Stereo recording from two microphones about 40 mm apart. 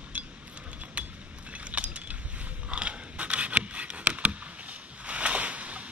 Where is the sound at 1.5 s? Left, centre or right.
Right.